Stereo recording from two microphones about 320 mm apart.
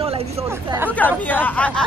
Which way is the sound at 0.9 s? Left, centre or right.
Centre.